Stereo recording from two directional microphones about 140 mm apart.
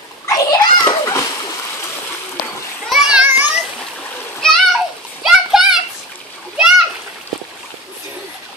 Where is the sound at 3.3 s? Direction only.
10° right (ahead or behind).